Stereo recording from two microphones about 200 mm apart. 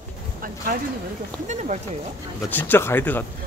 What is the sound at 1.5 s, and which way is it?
Speech, 35° right (ahead or behind).